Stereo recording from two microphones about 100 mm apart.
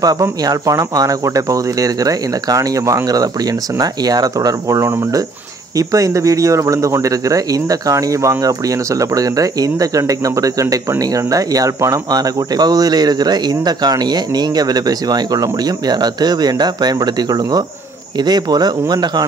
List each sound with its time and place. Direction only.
0.0 s speech: 40° right (ahead or behind)